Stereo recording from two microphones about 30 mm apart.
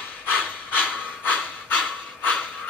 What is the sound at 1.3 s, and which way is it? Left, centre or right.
Pant, left.